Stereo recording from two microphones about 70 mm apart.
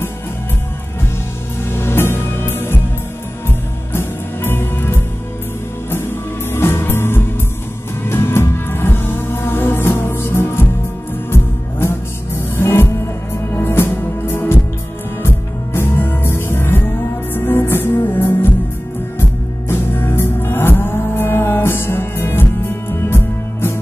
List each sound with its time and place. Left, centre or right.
1.7 s music: left
3.9 s music: left
12.4 s music: left
19.7 s music: left